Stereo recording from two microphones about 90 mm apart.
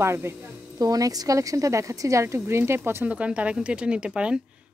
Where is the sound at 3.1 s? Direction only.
15° right (ahead or behind).